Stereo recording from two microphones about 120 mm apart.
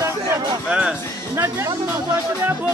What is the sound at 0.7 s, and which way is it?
Speech, 10° right (ahead or behind).